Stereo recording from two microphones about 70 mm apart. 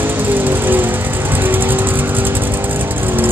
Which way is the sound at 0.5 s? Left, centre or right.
Right.